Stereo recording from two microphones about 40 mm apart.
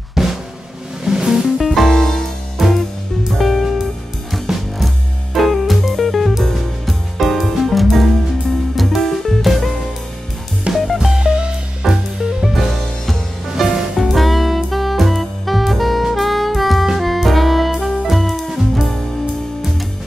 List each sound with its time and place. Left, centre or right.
0.2 s drum: centre
1.0 s music: centre
2.0 s music: centre
2.6 s music: centre
10.7 s music: right
11.0 s music: centre
11.2 s music: right
11.8 s music: centre
12.5 s music: centre